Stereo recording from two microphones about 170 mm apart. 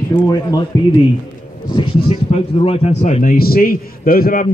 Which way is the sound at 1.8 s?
35° left (ahead or behind).